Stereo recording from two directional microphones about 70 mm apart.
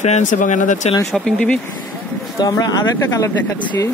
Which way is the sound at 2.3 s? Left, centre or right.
Left.